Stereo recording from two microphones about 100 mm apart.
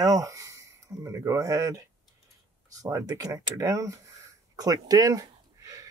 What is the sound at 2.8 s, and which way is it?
Speech, 35° right (ahead or behind).